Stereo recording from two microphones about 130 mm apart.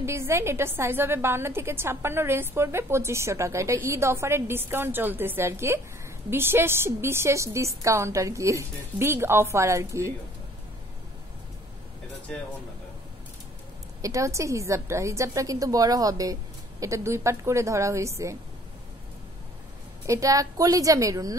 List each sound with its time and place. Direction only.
0.0 s a woman's voice: 20° right (ahead or behind)
14.0 s a woman's voice: 25° right (ahead or behind)
20.1 s a woman's voice: 25° right (ahead or behind)